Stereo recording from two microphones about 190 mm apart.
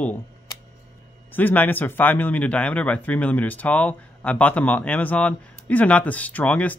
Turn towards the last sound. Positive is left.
turn(degrees=5)  # may be behind; listen again after turning